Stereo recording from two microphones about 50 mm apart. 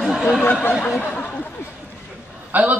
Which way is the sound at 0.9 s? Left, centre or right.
Left.